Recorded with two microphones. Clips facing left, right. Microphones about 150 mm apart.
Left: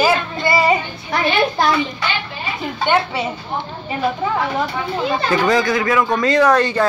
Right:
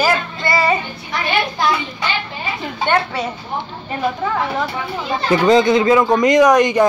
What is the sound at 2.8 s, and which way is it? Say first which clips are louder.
Speech: even; 5° left (ahead or behind).